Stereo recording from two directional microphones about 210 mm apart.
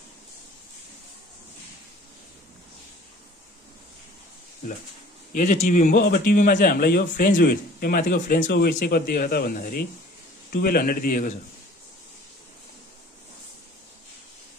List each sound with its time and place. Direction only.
5.3 s speech: 35° left (ahead or behind)